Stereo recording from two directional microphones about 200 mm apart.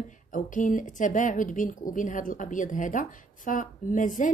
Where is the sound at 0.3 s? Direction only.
40° left (ahead or behind).